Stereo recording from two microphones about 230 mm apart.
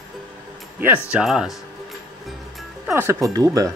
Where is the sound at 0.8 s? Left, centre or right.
Centre.